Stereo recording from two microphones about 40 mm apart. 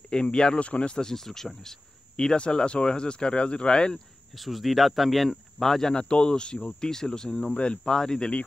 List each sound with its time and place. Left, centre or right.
0.1 s speech: left
0.9 s speech: centre
2.3 s speech: left
4.4 s speech: centre
5.9 s speech: left